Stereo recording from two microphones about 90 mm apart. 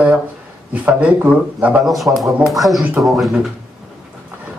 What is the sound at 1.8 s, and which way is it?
A man's voice, centre (ahead or behind).